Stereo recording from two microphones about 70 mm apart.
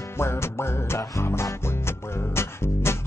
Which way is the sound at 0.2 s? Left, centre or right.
Left.